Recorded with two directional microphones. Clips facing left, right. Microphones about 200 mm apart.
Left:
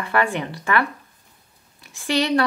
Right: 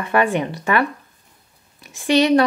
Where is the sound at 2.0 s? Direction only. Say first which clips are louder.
Right 6 dB; 20° right (ahead or behind).